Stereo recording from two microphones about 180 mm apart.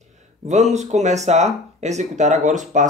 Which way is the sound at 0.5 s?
40° right (ahead or behind).